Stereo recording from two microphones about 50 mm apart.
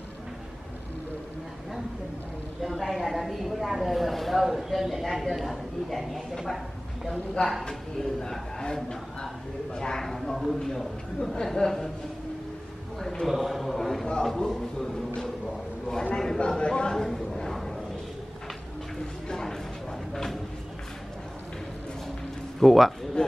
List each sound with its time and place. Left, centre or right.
2.8 s a woman's voice: centre
7.6 s speech: centre
10.0 s a woman's voice: centre
13.0 s a woman's voice: centre
14.2 s a sound: centre
16.3 s speech: centre
16.9 s a sound: centre
19.2 s a sound: centre
22.6 s a woman's voice: centre
23.2 s speech: centre